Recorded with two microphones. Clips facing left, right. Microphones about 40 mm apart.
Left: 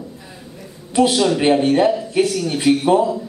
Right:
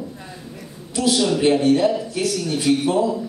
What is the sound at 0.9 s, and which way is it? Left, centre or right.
A man's voice, left.